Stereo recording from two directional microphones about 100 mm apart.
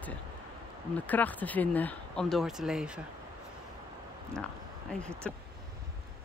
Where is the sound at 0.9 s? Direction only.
15° left (ahead or behind).